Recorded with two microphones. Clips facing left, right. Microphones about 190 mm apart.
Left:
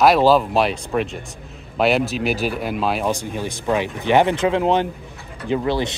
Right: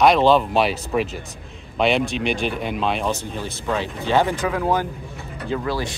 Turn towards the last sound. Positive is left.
turn(degrees=25)  # may be behind; listen again after turning